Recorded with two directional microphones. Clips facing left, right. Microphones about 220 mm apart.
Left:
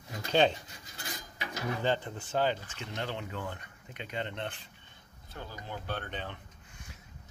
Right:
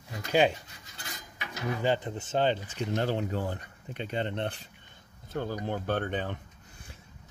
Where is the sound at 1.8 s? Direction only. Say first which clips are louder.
Right 4 dB; 15° right (ahead or behind).